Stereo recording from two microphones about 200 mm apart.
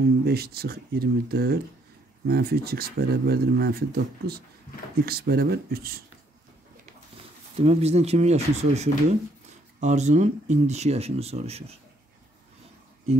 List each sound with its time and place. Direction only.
0.2 s speech: 50° right (ahead or behind)
7.5 s speech: 30° right (ahead or behind)